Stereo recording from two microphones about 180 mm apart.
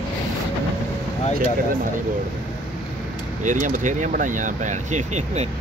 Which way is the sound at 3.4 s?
45° right (ahead or behind).